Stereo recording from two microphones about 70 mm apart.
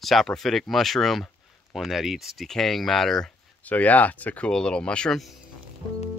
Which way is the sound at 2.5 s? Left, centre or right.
Centre.